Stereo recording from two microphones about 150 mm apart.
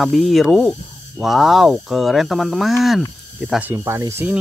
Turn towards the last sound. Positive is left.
turn(degrees=-15)  # may be behind; listen again after turning